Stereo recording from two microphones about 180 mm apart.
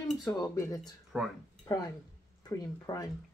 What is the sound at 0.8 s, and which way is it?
Speech, centre (ahead or behind).